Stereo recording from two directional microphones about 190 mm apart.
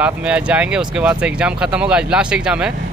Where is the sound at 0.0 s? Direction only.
5° right (ahead or behind).